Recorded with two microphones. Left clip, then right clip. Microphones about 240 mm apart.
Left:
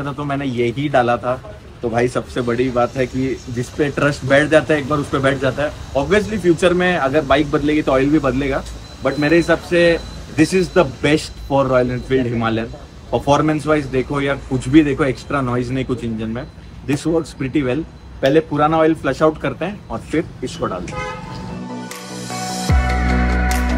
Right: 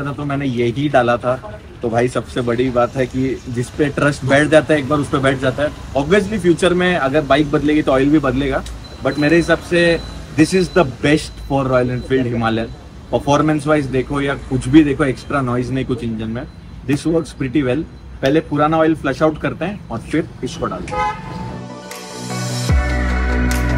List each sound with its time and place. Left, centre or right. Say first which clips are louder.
0.0 s a man's voice: even; centre
21.8 s music: right 1 dB; centre